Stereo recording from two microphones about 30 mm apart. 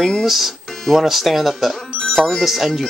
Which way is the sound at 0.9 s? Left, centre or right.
Centre.